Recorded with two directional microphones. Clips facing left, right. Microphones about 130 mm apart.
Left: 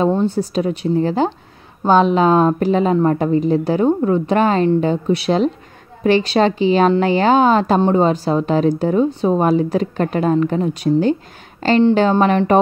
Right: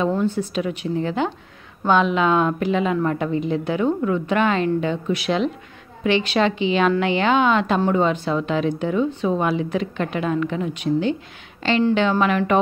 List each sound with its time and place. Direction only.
0.1 s a woman's voice: 35° left (ahead or behind)